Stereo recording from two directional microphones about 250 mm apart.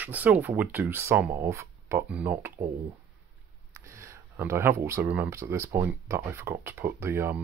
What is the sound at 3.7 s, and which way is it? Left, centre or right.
Speech, centre.